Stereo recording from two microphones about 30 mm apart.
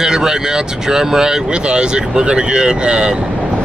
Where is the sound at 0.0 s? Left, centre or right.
Centre.